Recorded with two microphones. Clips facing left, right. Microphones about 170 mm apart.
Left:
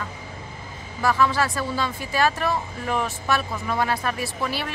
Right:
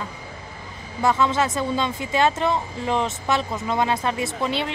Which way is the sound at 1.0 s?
20° right (ahead or behind).